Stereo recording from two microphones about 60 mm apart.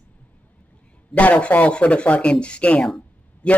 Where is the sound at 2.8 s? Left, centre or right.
Centre.